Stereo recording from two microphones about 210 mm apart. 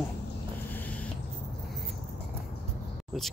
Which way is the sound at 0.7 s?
5° left (ahead or behind).